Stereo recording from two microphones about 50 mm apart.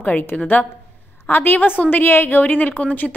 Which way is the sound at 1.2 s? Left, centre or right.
Left.